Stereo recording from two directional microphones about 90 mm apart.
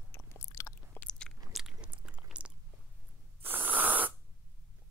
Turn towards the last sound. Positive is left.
turn(degrees=-20)  # may be behind; listen again after turning